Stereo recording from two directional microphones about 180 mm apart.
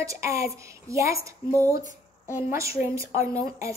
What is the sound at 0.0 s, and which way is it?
A woman's voice, 15° right (ahead or behind).